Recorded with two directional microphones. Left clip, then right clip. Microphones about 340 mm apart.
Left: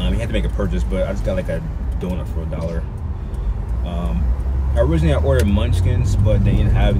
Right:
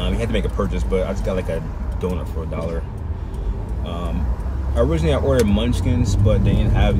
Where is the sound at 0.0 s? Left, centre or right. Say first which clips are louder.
Right 1 dB; centre.